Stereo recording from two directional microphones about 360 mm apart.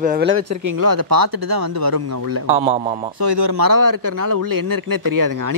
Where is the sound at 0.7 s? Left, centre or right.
Right.